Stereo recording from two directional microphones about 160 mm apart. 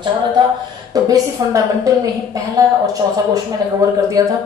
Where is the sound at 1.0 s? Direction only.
20° right (ahead or behind).